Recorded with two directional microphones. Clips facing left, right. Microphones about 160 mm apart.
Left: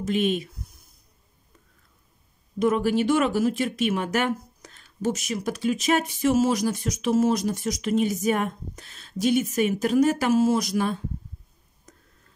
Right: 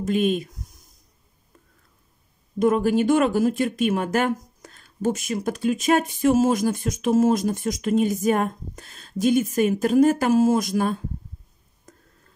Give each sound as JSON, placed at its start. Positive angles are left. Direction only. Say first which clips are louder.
{"t": 0.0, "sound": "speech", "louder": "right 2 dB", "side_deg": -45}
{"t": 2.6, "sound": "speech", "louder": "right 3 dB", "side_deg": -45}